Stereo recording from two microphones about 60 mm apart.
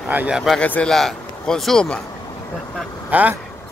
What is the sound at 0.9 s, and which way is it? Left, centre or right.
Speech, centre.